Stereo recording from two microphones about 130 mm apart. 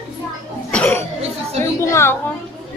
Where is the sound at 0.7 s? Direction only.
10° left (ahead or behind).